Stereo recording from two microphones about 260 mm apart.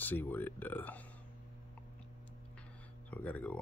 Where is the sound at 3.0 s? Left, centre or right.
Centre.